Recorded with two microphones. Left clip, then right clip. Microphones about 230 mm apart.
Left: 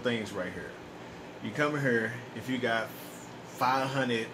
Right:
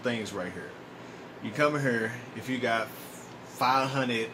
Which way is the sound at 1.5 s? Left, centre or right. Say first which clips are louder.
Right 2 dB; centre.